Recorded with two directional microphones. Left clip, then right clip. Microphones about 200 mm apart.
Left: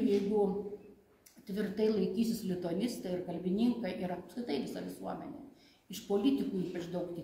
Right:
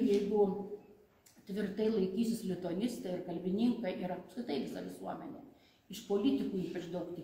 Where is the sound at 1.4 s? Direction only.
20° left (ahead or behind).